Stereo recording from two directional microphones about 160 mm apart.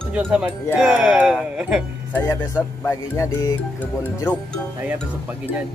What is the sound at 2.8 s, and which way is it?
Speech, 20° left (ahead or behind).